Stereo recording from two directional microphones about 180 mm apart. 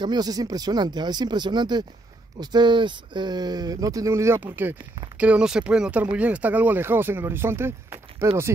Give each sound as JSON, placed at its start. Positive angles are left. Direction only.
{"t": 0.0, "sound": "speech", "side_deg": -25}